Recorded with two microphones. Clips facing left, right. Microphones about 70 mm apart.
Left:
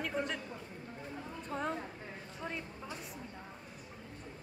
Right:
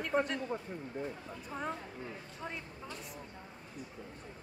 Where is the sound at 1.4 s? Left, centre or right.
Centre.